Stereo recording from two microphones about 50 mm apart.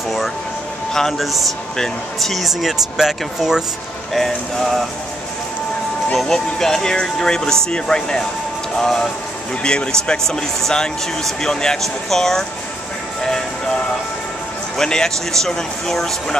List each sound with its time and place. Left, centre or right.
1.1 s speech: centre
4.1 s speech: centre
6.1 s speech: centre
9.6 s a man's voice: centre
14.8 s speech: centre